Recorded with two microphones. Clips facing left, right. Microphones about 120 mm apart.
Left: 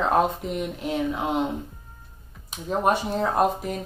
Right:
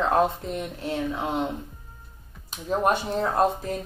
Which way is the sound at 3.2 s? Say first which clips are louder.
Even; 15° left (ahead or behind).